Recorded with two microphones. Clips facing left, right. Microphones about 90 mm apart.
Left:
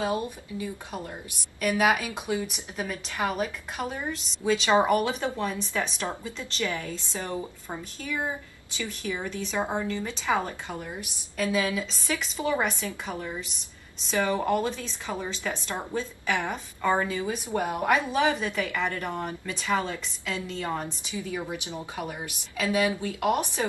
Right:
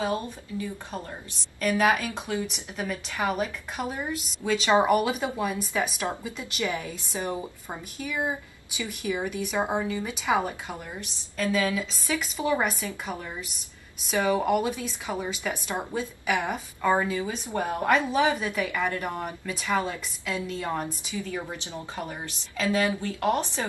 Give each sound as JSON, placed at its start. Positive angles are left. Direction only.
{"t": 0.1, "sound": "a woman's voice", "side_deg": 15}
{"t": 11.5, "sound": "a woman's voice", "side_deg": 5}
{"t": 17.6, "sound": "a woman's voice", "side_deg": 15}
{"t": 21.1, "sound": "speech", "side_deg": 15}